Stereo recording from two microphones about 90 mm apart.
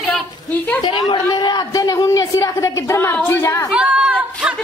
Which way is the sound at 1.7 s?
45° left (ahead or behind).